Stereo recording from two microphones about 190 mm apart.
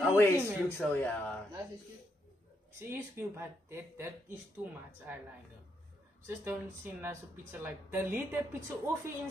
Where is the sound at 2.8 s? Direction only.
15° right (ahead or behind).